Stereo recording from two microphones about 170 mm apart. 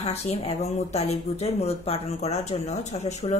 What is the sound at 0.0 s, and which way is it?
Speech, 40° left (ahead or behind).